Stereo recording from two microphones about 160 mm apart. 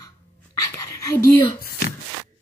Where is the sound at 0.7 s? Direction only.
20° left (ahead or behind).